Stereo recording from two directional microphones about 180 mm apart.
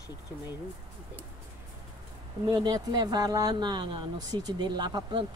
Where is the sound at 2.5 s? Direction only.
25° right (ahead or behind).